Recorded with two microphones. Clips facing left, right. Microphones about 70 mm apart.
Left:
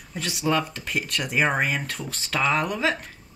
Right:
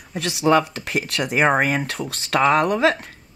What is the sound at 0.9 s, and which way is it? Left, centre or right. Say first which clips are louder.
Speech: right 4 dB; right.